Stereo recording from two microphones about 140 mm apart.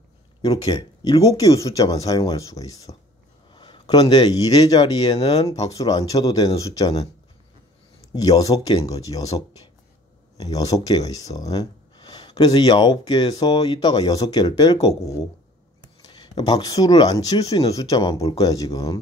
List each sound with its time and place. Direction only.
0.4 s speech: 30° left (ahead or behind)
2.9 s speech: 40° left (ahead or behind)
8.1 s speech: 25° left (ahead or behind)